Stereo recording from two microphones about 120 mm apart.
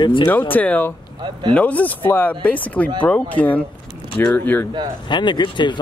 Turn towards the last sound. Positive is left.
turn(degrees=40)  # may be behind; listen again after turning